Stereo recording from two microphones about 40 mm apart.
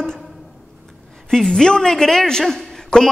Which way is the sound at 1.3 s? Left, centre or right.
Centre.